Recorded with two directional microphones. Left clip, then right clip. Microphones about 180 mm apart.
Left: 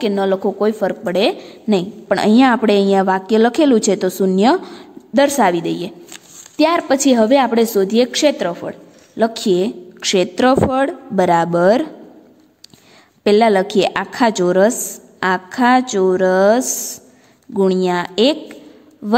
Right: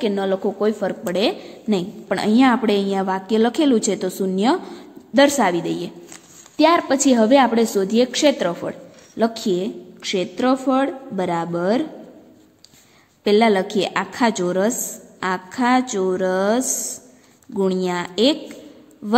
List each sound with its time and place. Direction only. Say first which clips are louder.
0.0 s a woman's voice: left 4 dB; 25° left (ahead or behind)
9.1 s a woman's voice: left 5 dB; 25° left (ahead or behind)
13.2 s a woman's voice: left 4 dB; 30° left (ahead or behind)